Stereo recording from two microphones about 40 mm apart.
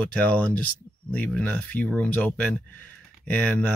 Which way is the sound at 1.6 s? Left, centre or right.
Left.